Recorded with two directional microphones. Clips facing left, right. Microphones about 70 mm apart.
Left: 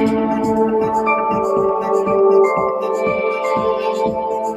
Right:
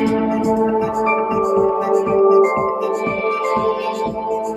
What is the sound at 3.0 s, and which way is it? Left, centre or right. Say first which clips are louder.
Music: left 2 dB; centre.